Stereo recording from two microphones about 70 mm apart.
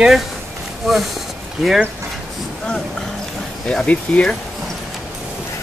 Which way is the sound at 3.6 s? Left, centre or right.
Centre.